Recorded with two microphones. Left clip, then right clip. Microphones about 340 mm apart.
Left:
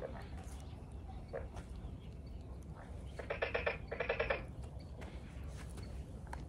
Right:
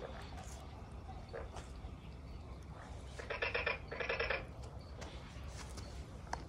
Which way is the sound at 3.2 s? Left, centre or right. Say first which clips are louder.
Even; left.